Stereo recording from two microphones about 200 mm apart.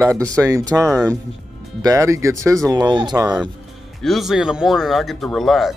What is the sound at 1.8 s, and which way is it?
Speech, 15° right (ahead or behind).